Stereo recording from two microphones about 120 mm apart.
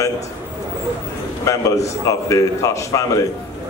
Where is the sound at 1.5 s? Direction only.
25° left (ahead or behind).